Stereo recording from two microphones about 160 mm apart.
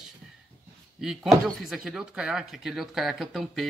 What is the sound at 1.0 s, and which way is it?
Speech, centre (ahead or behind).